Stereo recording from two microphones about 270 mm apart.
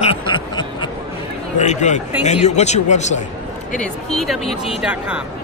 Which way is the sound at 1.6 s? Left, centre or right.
Left.